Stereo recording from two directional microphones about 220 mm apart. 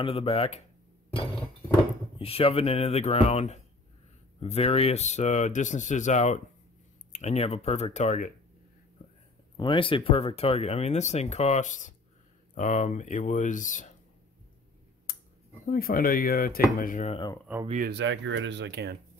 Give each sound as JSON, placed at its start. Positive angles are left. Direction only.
{"t": 0.0, "sound": "speech", "side_deg": 25}
{"t": 1.1, "sound": "chink", "side_deg": 25}
{"t": 2.1, "sound": "speech", "side_deg": 25}
{"t": 9.6, "sound": "speech", "side_deg": 20}
{"t": 15.6, "sound": "speech", "side_deg": 40}
{"t": 17.5, "sound": "speech", "side_deg": -5}
{"t": 17.8, "sound": "speech", "side_deg": -55}